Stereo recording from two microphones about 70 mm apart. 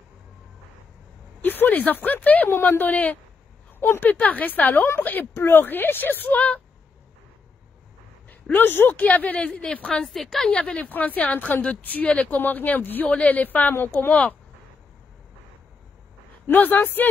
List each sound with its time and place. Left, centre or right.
1.4 s speech: left
8.3 s speech: left; by 10.5 s centre
10.5 s speech: centre
16.4 s speech: left